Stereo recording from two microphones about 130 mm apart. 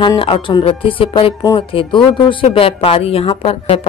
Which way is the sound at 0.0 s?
40° left (ahead or behind).